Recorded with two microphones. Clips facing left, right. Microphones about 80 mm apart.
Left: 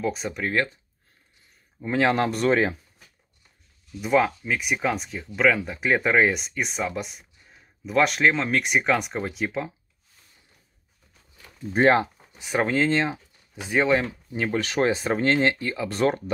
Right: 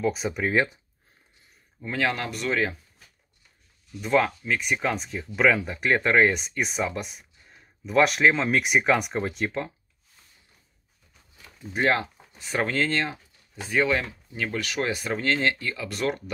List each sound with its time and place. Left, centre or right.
0.0 s speech: centre
1.8 s speech: left
4.0 s speech: centre
11.7 s speech: left